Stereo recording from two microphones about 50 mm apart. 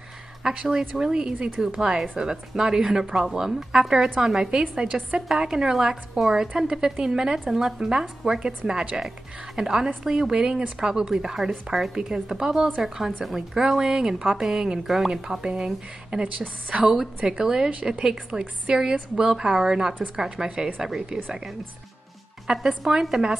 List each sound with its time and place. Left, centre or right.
0.4 s speech: centre
20.4 s speech: right
22.5 s speech: centre